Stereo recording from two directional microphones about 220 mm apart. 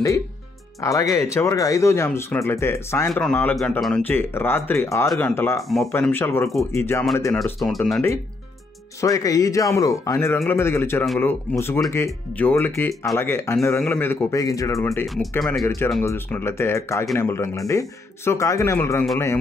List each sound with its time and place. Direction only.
0.7 s speech: 15° left (ahead or behind)
9.0 s speech: 15° left (ahead or behind)
14.9 s speech: 5° left (ahead or behind)